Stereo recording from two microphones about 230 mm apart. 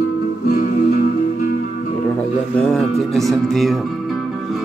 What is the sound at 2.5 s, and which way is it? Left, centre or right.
Speech, centre.